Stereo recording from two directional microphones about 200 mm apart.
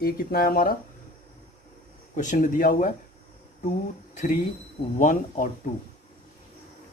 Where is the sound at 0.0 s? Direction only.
50° left (ahead or behind).